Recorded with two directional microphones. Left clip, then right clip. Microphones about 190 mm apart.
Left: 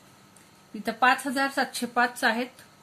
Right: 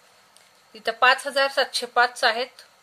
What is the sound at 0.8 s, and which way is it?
Speech, 40° right (ahead or behind).